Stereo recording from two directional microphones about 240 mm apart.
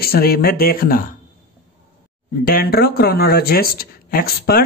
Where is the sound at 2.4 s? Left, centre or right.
Left.